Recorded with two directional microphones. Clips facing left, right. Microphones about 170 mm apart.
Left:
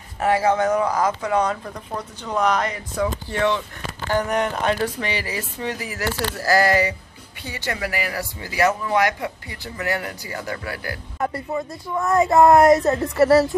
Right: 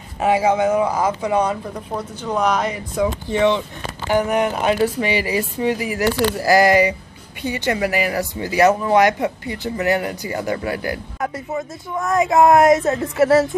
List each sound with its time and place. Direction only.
0.2 s speech: 15° right (ahead or behind)
11.1 s speech: centre (ahead or behind)